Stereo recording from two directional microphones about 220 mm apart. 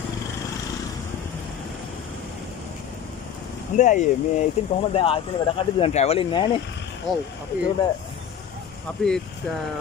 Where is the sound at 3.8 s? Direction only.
35° left (ahead or behind).